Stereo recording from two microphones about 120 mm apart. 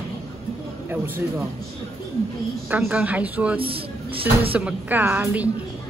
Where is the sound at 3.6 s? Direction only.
50° right (ahead or behind).